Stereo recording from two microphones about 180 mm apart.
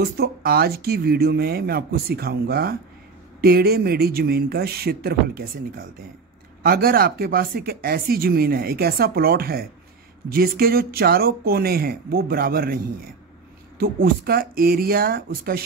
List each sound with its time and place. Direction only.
0.0 s speech: 60° right (ahead or behind)